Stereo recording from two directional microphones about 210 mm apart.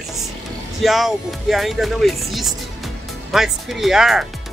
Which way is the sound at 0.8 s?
Centre (ahead or behind).